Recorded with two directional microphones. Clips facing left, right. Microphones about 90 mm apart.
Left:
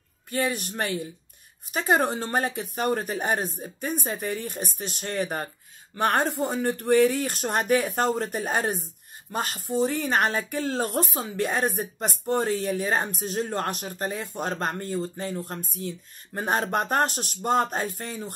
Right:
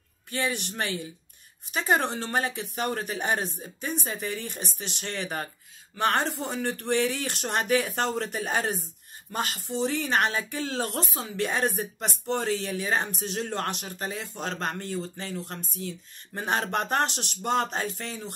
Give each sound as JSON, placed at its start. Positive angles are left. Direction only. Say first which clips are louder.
{"t": 0.3, "sound": "speech", "louder": "left 3 dB", "side_deg": 45}